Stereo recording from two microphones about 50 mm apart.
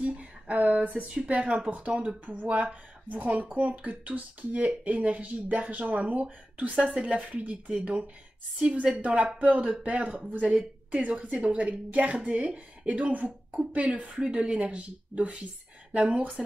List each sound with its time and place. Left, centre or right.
0.0 s a sound: right
0.7 s a woman's voice: right
3.4 s speech: right
6.9 s a woman's voice: right